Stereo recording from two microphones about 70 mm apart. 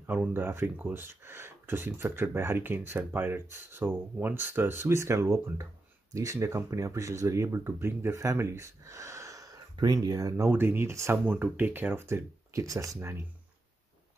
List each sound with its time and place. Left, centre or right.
0.0 s speech: right
9.8 s speech: right
10.5 s speech: right
11.2 s speech: right
12.5 s speech: right